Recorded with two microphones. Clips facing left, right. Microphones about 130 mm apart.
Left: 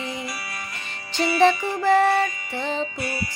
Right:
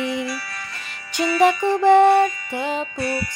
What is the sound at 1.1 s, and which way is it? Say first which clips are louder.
Music: right 1 dB; 20° right (ahead or behind).